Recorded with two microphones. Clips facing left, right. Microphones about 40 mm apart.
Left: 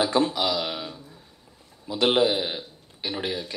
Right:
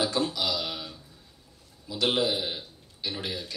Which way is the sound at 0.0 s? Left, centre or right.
Left.